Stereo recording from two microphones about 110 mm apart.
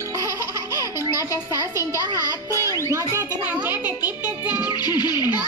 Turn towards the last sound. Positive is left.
turn(degrees=40)  # may be behind; listen again after turning